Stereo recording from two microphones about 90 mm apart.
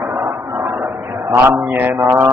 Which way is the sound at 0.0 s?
30° right (ahead or behind).